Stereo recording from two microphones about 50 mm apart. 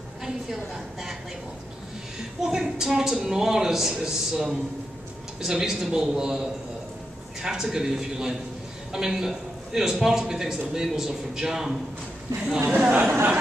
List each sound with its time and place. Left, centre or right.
2.4 s a woman's voice: centre
12.6 s speech: right